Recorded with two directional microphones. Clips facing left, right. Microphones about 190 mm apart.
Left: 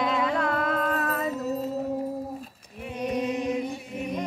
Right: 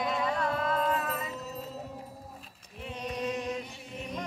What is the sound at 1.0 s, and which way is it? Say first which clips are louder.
Music: left 7 dB; 60° left (ahead or behind).